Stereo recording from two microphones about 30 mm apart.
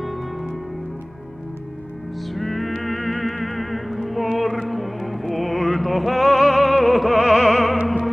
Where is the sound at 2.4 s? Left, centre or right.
Centre.